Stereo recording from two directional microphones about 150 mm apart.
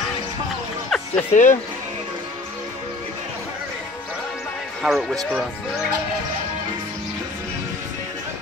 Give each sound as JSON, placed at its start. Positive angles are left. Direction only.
{"t": 0.8, "sound": "music", "side_deg": 5}
{"t": 1.3, "sound": "speech", "side_deg": 55}
{"t": 4.8, "sound": "speech", "side_deg": 0}